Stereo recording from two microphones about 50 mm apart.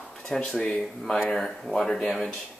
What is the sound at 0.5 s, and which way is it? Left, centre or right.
Speech, centre.